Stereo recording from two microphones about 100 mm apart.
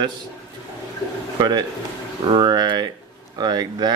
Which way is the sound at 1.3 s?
45° right (ahead or behind).